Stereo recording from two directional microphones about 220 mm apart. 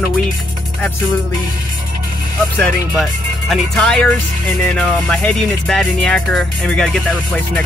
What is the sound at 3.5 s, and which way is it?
Speech, 5° left (ahead or behind).